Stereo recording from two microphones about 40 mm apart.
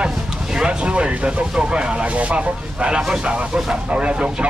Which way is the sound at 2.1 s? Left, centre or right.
Right.